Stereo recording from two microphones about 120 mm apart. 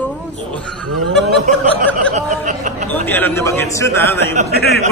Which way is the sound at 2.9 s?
15° left (ahead or behind).